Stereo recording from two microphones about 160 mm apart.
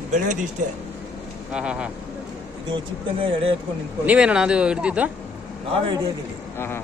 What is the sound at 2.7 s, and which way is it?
Speech, 35° right (ahead or behind).